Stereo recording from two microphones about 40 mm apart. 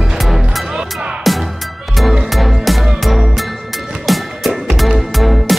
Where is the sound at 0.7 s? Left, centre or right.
Centre.